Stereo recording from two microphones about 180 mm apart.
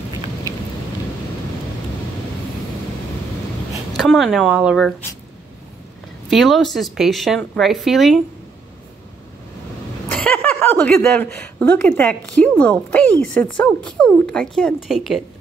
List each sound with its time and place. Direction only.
3.9 s speech: centre (ahead or behind)
6.3 s speech: centre (ahead or behind)
10.1 s speech: 10° left (ahead or behind)